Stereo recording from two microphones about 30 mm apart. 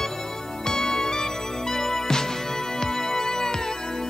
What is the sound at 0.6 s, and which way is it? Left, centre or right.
Music, left.